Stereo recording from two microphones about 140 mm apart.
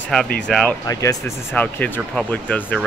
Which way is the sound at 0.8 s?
25° left (ahead or behind).